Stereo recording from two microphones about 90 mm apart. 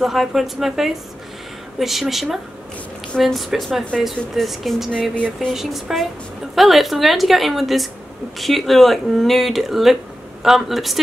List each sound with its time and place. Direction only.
0.0 s speech: 5° right (ahead or behind)